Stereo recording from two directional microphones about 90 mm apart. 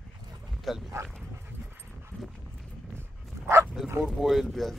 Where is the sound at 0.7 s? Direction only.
Centre (ahead or behind).